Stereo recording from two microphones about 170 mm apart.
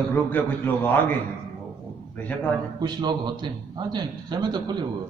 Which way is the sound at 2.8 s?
25° right (ahead or behind).